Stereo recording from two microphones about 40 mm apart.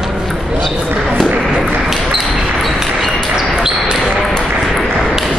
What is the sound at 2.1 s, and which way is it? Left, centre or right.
Basketball bounce, centre.